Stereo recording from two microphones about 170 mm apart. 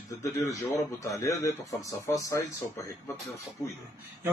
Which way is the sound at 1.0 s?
20° left (ahead or behind).